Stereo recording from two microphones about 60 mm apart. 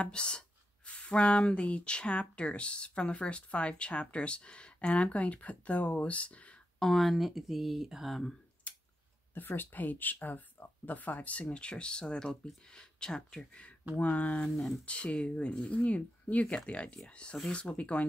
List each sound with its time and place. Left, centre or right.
0.0 s speech: centre
6.8 s speech: centre
8.6 s a sound: left
9.3 s speech: left
14.5 s speech: centre
14.9 s speech: centre